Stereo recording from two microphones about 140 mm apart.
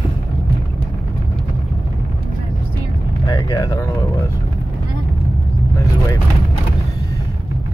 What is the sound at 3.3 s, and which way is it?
Speech, 25° left (ahead or behind).